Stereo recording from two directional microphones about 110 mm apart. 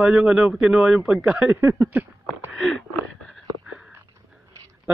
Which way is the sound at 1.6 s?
25° right (ahead or behind).